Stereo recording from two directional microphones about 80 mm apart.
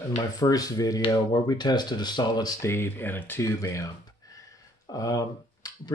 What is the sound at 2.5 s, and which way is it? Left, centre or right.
Speech, left.